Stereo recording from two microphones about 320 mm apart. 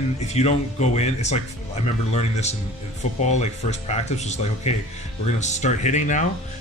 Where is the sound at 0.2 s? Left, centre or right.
Centre.